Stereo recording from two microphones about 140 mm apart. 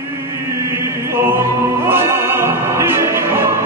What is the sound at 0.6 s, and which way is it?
Music, 20° right (ahead or behind).